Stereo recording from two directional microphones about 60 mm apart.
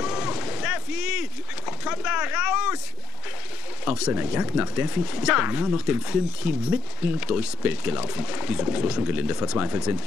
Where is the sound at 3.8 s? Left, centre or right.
Centre.